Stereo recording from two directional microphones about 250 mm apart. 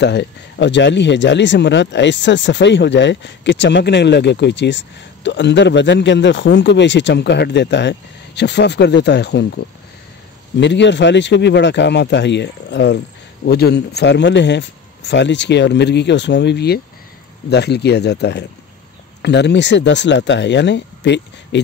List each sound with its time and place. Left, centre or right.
0.0 s speech: left
10.6 s speech: left